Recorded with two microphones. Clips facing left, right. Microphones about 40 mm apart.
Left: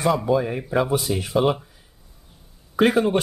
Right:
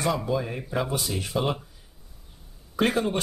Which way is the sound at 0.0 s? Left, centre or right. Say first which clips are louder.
Left 6 dB; centre.